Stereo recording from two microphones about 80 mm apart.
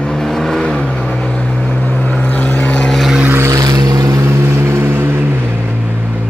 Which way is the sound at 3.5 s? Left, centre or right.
Right.